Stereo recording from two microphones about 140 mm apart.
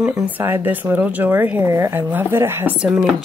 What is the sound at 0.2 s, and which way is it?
Speech, 15° right (ahead or behind).